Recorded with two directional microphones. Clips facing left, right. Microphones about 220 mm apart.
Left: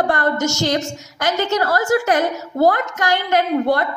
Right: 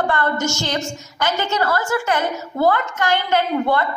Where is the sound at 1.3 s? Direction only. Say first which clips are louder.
Left 3 dB; 40° left (ahead or behind).